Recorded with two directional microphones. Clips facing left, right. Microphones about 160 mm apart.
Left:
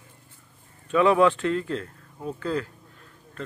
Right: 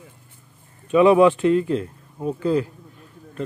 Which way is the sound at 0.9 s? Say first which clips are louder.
Right 5 dB; 15° right (ahead or behind).